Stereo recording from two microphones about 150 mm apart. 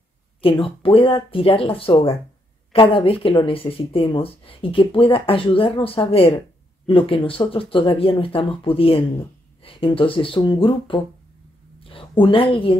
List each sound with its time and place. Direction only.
0.4 s speech: 35° left (ahead or behind)